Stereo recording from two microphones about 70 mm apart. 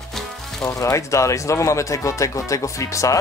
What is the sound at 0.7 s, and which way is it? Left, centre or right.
Speech, left.